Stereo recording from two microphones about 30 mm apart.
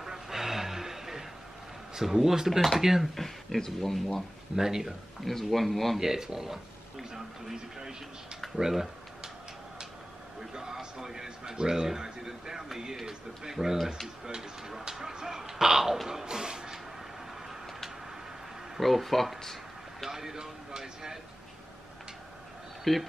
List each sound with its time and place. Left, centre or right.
0.0 s vehicle: centre
2.0 s speech: centre
3.2 s speech: centre
4.6 s speech: centre
5.2 s speech: centre
5.9 s speech: centre
10.4 s speech: centre
18.8 s speech: centre
20.1 s speech: centre
22.9 s speech: centre